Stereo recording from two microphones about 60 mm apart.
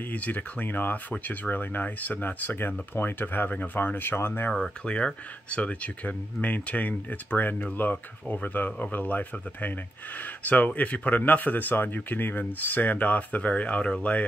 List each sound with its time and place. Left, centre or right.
0.1 s speech: left
4.5 s speech: centre